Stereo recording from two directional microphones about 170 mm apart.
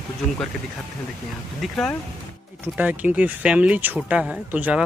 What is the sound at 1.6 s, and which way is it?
Speech, 5° left (ahead or behind).